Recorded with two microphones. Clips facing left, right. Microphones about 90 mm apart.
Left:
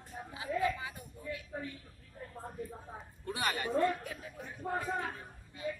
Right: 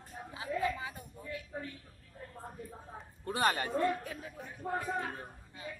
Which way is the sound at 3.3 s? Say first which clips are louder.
Right 3 dB; 40° right (ahead or behind).